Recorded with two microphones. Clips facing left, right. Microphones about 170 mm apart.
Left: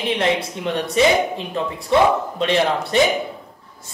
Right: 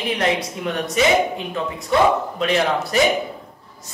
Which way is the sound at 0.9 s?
30° left (ahead or behind).